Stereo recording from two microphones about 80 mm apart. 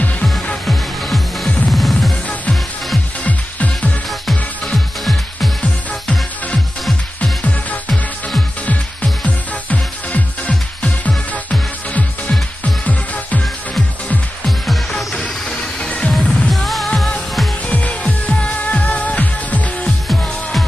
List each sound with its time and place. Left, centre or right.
0.2 s music: centre
3.3 s music: centre
4.3 s music: centre
5.6 s music: centre
13.7 s music: centre